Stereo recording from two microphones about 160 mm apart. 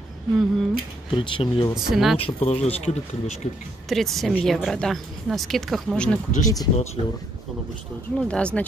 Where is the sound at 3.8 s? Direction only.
Centre (ahead or behind).